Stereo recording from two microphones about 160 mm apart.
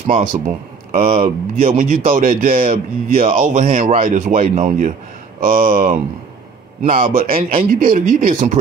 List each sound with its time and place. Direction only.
0.0 s a man's voice: 55° right (ahead or behind)